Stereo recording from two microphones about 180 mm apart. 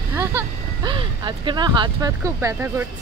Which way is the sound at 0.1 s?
10° right (ahead or behind).